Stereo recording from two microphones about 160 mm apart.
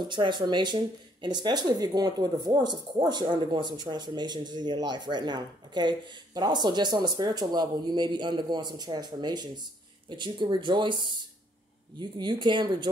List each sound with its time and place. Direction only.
0.0 s speech: 30° right (ahead or behind)